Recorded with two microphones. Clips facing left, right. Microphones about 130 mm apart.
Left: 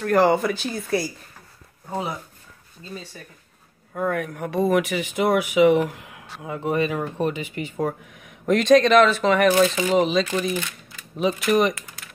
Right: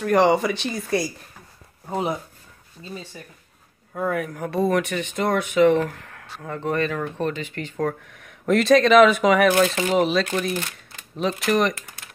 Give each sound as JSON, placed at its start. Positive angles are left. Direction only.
{"t": 0.0, "sound": "speech", "side_deg": 0}
{"t": 1.9, "sound": "speech", "side_deg": -20}
{"t": 3.9, "sound": "speech", "side_deg": 0}
{"t": 9.5, "sound": "speech", "side_deg": 0}